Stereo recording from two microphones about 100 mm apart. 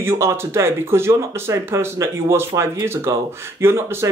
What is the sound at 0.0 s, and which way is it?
A man's voice, 25° right (ahead or behind).